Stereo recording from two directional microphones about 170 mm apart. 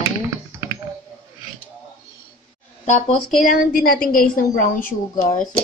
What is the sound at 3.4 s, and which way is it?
Speech, 55° left (ahead or behind).